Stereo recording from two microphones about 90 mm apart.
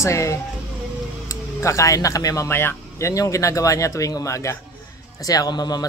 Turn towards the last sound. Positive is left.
turn(degrees=50)  # may be behind; listen again after turning